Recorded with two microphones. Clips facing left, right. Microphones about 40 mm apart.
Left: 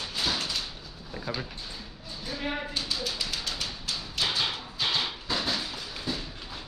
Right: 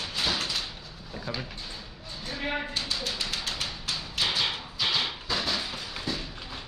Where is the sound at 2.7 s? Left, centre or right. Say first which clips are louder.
Even; centre.